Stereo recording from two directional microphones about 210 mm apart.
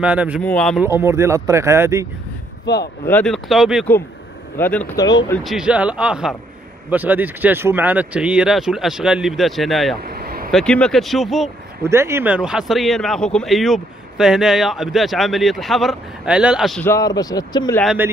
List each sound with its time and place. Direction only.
0.0 s speech: 5° right (ahead or behind)
0.4 s speech: 5° left (ahead or behind)
0.8 s speech: 10° right (ahead or behind)
2.6 s speech: 50° left (ahead or behind)
3.1 s speech: 5° left (ahead or behind)
4.6 s speech: 10° left (ahead or behind)
5.4 s speech: centre (ahead or behind)
10.0 s a sound: 45° right (ahead or behind)
10.5 s speech: 5° left (ahead or behind)
11.8 s speech: 10° right (ahead or behind)
16.8 s speech: 15° left (ahead or behind)